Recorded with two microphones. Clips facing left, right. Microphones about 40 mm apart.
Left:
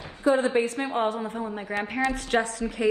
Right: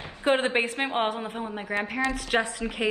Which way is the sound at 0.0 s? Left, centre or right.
Right.